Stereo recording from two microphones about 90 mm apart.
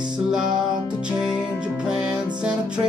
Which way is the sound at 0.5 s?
55° right (ahead or behind).